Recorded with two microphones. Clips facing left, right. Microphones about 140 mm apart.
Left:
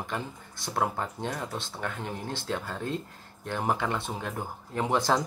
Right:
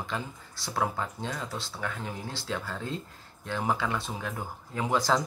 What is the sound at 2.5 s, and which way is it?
Speech, 20° left (ahead or behind).